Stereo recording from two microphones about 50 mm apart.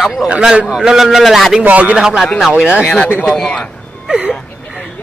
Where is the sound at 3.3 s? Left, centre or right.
Centre.